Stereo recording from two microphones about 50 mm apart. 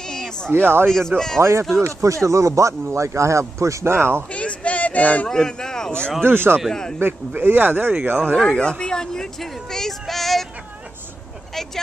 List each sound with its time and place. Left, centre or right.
0.5 s speech: right
0.8 s speech: centre
1.4 s speech: right
2.2 s speech: right
3.9 s speech: right
4.3 s a sound: left
5.3 s speech: centre
6.2 s speech: right
6.7 s speech: centre
7.0 s speech: right
8.5 s speech: centre